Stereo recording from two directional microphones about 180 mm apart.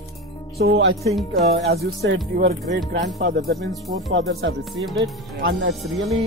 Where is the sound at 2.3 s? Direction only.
50° right (ahead or behind).